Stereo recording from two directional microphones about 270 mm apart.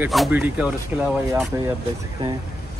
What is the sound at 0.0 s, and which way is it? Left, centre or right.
Speech, centre.